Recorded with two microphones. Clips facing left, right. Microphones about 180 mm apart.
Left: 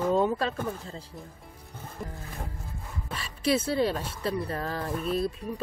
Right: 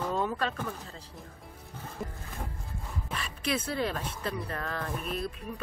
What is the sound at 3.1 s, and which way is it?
Bow-wow, 30° left (ahead or behind).